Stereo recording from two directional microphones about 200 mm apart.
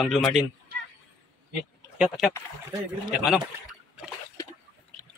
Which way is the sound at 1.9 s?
5° right (ahead or behind).